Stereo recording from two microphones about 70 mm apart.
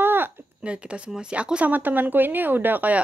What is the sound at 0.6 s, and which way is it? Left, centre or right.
Speech, centre.